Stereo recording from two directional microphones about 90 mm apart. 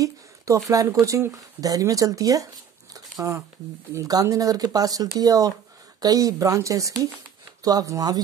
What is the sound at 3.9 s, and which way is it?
Speech, 40° right (ahead or behind).